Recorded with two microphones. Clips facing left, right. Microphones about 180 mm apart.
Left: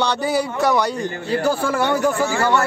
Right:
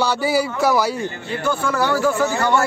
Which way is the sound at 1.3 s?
35° left (ahead or behind).